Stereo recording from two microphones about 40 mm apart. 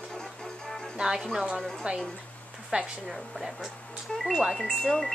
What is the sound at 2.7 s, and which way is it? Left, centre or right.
Speech, right.